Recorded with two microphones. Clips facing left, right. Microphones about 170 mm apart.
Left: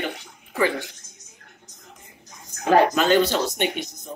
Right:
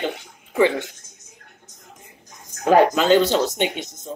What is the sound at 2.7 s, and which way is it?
Speech, 20° right (ahead or behind).